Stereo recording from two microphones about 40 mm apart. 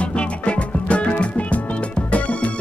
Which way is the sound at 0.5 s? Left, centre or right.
Left.